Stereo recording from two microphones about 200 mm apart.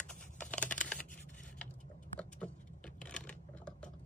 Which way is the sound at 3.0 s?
5° left (ahead or behind).